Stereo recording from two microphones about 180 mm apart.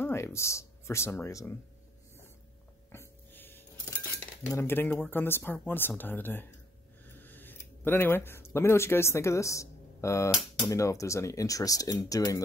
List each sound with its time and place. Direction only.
0.0 s speech: 15° left (ahead or behind)
2.9 s a sound: 15° left (ahead or behind)
4.5 s speech: 15° left (ahead or behind)